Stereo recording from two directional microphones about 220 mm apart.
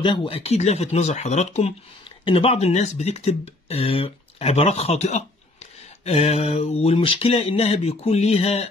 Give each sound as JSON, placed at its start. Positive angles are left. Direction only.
{"t": 0.0, "sound": "speech", "side_deg": 20}